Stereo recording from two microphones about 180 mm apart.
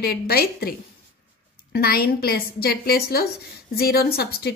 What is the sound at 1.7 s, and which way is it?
A woman's voice, 60° left (ahead or behind).